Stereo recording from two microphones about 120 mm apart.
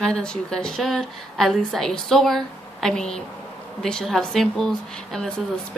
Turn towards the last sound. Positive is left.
turn(degrees=5)  # may be behind; listen again after turning